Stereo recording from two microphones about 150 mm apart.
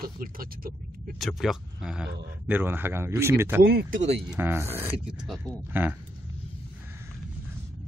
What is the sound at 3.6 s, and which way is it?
Speech, 90° right.